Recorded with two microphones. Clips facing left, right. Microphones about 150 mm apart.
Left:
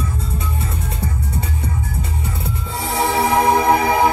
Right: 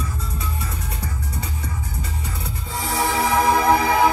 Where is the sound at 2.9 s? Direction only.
25° left (ahead or behind).